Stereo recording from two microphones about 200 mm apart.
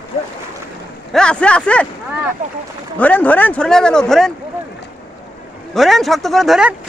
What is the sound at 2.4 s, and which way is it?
Speech, 40° right (ahead or behind).